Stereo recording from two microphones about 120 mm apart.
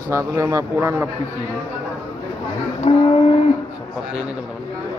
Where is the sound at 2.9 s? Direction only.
65° left (ahead or behind).